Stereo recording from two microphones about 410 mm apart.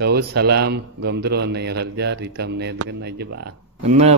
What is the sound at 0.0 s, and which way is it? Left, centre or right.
A man's voice, right.